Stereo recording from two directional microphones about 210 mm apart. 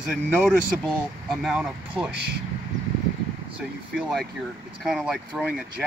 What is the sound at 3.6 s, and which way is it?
Speech, 5° right (ahead or behind).